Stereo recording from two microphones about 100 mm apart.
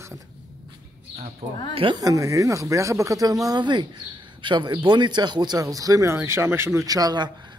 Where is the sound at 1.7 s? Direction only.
65° right (ahead or behind).